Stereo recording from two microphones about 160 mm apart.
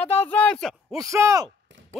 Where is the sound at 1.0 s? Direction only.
20° right (ahead or behind).